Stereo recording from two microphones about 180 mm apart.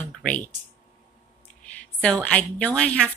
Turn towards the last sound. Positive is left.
turn(degrees=5)  # may be behind; listen again after turning